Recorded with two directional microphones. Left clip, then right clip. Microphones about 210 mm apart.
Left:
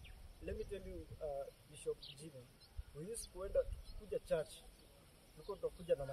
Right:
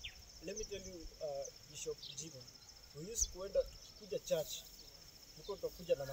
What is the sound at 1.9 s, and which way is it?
Speech, centre (ahead or behind).